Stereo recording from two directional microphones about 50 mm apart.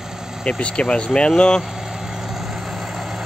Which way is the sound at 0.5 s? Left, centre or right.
Left.